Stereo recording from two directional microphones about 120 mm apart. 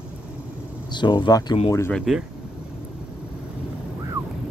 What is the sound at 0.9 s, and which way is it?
Speech, 40° left (ahead or behind).